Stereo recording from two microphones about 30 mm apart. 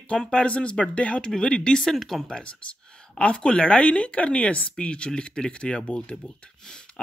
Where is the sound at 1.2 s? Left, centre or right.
Left; by 2.1 s centre.